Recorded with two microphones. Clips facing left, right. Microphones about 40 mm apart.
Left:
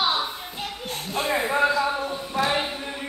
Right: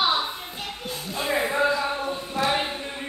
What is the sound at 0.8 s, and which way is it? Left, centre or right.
Music, left.